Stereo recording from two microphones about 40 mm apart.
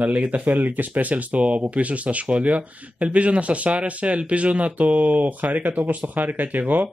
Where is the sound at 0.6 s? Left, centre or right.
Right.